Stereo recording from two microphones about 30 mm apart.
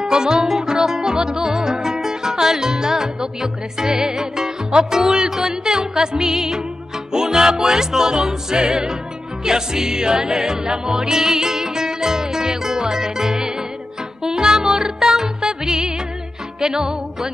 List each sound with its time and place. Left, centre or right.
0.0 s music: right